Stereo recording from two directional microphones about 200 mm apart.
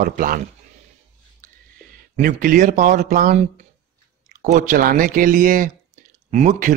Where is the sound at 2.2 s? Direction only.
45° right (ahead or behind).